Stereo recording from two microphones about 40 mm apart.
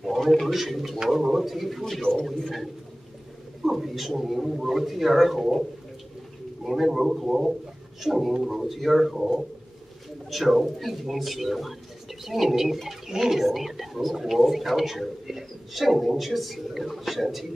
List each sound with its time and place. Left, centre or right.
0.0 s a man's voice: centre
2.0 s a man's voice: left
3.6 s speech: centre
6.6 s a man's voice: centre